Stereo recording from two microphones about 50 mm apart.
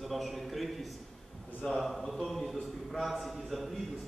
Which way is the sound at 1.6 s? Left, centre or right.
Centre.